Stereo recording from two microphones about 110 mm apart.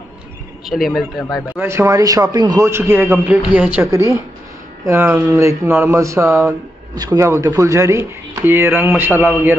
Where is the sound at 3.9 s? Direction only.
30° right (ahead or behind).